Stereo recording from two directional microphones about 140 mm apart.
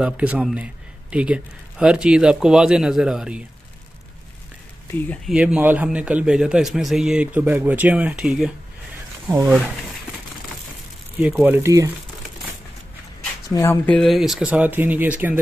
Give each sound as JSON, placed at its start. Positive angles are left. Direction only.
{"t": 0.0, "sound": "a man's voice", "side_deg": -10}
{"t": 4.9, "sound": "speech", "side_deg": 10}
{"t": 5.2, "sound": "a man's voice", "side_deg": -5}
{"t": 11.4, "sound": "speech", "side_deg": -15}
{"t": 13.5, "sound": "speech", "side_deg": 25}
{"t": 13.8, "sound": "a man's voice", "side_deg": 5}